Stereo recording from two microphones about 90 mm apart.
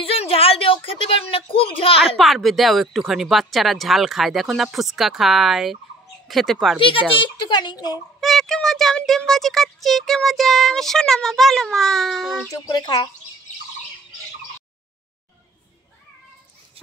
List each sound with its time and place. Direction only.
0.0 s a sound: 90° left
2.1 s speech: centre (ahead or behind)
6.8 s speech: 75° left (ahead or behind); by 8.0 s 50° left (ahead or behind)
8.2 s speech: 5° left (ahead or behind)
12.4 s speech: 45° left (ahead or behind)